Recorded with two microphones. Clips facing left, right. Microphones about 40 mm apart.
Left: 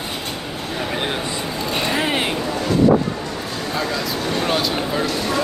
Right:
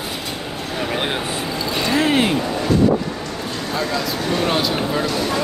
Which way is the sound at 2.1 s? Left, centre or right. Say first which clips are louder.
Right 4 dB; centre.